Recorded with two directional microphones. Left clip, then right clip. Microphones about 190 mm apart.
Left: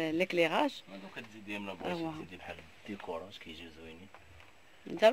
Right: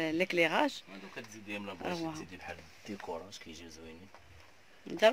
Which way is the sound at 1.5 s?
25° left (ahead or behind).